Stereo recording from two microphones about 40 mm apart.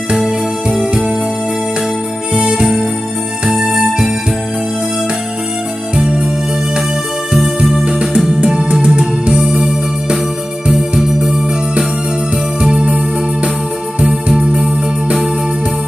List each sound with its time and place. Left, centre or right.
0.1 s music: centre
2.3 s music: centre
3.6 s music: centre
8.8 s music: right
10.7 s music: centre
12.6 s music: right
14.2 s music: right